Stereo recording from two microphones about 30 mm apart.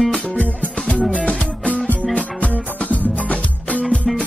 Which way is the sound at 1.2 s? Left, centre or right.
Left.